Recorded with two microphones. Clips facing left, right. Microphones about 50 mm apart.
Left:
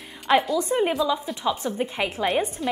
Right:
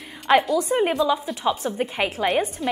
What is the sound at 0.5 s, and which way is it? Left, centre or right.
Speech, centre.